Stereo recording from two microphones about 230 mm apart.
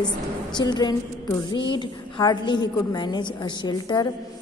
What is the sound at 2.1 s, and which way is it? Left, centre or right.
A woman's voice, centre.